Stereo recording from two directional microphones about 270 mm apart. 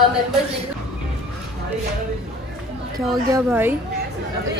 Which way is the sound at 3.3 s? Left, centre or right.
Centre.